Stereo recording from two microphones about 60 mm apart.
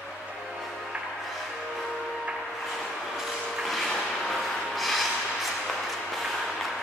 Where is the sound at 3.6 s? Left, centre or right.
Centre.